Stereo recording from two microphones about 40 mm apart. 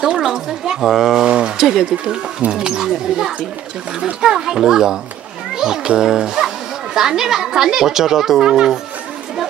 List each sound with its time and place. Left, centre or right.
0.2 s speech: centre
1.2 s speech: right